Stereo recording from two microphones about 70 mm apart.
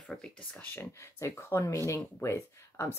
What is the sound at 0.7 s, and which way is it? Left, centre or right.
Speech, left.